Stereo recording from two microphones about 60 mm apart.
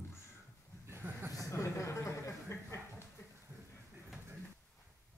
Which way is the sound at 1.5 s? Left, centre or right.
Left.